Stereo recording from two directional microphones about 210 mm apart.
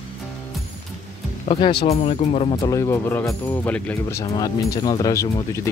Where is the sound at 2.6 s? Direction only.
15° left (ahead or behind).